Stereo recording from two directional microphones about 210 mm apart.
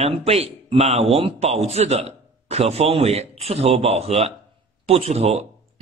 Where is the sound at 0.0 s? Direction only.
25° right (ahead or behind).